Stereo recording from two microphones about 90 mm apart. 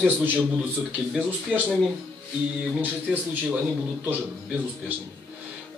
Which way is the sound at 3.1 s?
20° right (ahead or behind).